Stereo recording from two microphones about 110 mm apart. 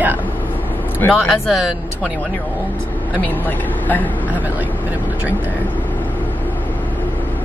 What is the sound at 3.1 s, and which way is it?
Speech, 15° left (ahead or behind).